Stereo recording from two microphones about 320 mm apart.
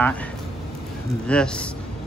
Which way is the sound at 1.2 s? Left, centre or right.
Centre.